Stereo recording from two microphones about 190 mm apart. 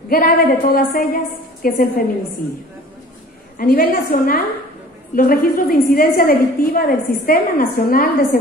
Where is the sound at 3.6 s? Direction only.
50° left (ahead or behind).